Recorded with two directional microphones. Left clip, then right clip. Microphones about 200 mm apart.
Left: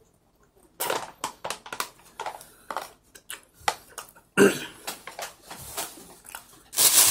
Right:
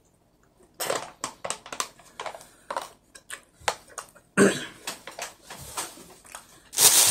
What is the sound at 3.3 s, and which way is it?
Cough, 5° right (ahead or behind).